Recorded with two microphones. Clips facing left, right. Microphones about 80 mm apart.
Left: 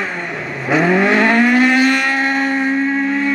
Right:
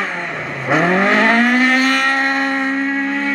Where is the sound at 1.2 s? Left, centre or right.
Right.